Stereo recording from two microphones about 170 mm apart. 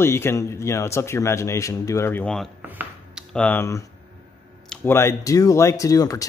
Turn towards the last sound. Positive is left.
turn(degrees=20)  # may be behind; listen again after turning